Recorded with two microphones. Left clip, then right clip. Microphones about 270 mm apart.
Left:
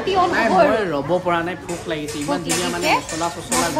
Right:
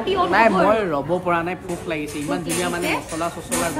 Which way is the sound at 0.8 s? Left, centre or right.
Centre.